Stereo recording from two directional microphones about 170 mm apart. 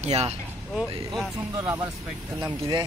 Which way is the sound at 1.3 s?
20° right (ahead or behind).